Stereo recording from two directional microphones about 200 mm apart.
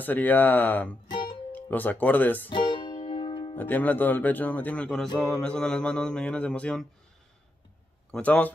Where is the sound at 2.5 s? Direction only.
25° left (ahead or behind).